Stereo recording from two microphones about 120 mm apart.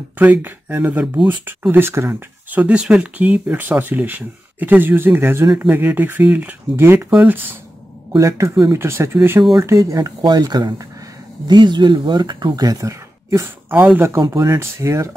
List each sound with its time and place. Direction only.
0.2 s speech: 15° right (ahead or behind)
8.1 s speech: 25° right (ahead or behind)